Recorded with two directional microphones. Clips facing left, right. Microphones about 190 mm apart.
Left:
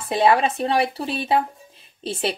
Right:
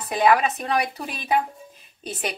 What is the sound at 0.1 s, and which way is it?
Speech, 30° left (ahead or behind).